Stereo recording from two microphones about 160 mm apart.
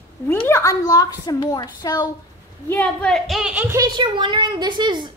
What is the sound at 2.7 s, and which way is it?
A woman's voice, 10° left (ahead or behind).